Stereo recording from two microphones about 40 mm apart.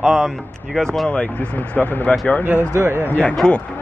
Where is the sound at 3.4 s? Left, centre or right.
Left.